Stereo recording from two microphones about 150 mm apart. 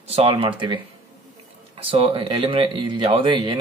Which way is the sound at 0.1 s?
40° right (ahead or behind).